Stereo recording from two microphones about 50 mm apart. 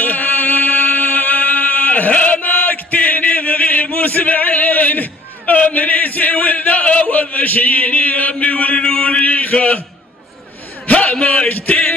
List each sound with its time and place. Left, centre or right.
0.0 s music: left
5.6 s speech: left
10.9 s speech: left